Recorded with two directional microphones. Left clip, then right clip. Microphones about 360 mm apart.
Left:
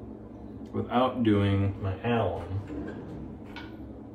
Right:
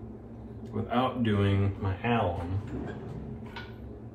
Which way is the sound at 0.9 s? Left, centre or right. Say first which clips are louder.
Left 3 dB; centre.